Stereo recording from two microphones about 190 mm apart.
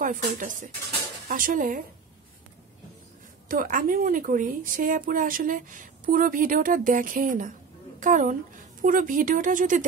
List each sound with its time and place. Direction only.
0.0 s a woman's voice: 45° right (ahead or behind)
3.4 s a woman's voice: 45° right (ahead or behind)